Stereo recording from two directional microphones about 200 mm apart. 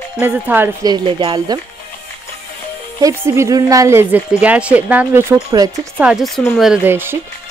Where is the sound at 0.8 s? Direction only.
20° right (ahead or behind).